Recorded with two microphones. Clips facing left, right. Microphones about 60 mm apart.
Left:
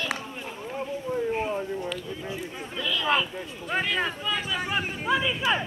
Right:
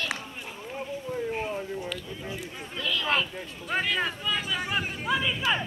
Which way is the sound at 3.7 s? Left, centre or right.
Centre.